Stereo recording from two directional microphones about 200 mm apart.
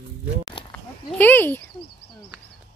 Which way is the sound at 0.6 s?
25° left (ahead or behind).